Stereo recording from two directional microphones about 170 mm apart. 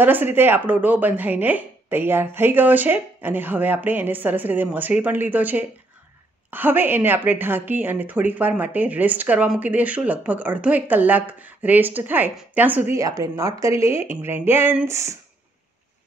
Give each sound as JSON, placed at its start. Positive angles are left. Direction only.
{"t": 0.0, "sound": "speech", "side_deg": -10}